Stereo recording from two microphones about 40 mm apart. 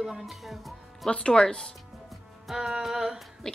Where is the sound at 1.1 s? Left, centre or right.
Left.